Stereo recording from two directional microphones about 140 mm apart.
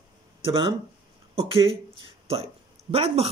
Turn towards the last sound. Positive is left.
turn(degrees=-45)  # may be behind; listen again after turning